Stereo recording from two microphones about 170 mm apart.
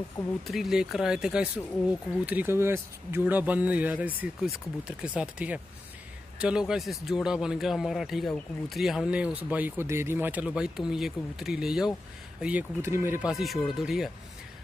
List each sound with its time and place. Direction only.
0.5 s speech: centre (ahead or behind)
13.3 s speech: centre (ahead or behind)